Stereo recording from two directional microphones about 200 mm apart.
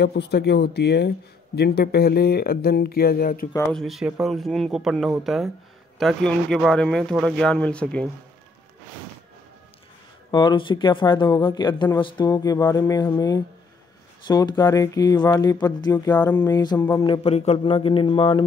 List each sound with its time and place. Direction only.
0.0 s speech: 55° left (ahead or behind)
3.7 s speech: centre (ahead or behind)
10.3 s speech: 25° left (ahead or behind)
17.0 s speech: 25° left (ahead or behind)